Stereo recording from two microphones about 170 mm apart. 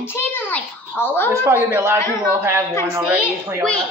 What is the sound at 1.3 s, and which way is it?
Speech, 15° right (ahead or behind).